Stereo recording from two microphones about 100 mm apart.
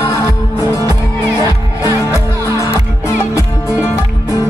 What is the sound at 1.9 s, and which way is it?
Music, 30° right (ahead or behind).